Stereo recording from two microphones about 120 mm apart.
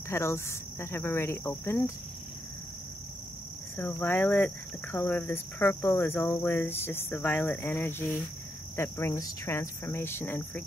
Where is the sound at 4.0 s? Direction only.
15° left (ahead or behind).